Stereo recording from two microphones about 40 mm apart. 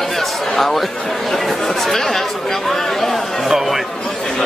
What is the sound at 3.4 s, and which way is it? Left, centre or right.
Speech, centre.